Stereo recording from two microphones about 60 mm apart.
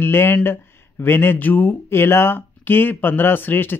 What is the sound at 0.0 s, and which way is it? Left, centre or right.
Speech, left.